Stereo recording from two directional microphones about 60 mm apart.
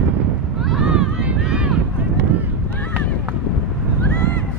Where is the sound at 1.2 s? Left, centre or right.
Centre.